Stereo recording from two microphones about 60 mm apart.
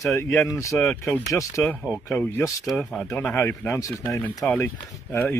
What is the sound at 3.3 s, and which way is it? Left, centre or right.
Speech, left.